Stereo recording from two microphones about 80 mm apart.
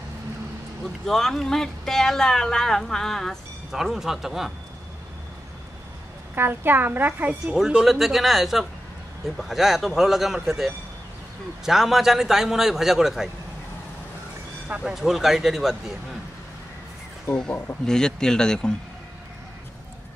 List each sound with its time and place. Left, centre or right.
1.0 s speech: centre
6.3 s a woman's voice: right
7.4 s speech: centre
14.7 s speech: centre
17.3 s speech: centre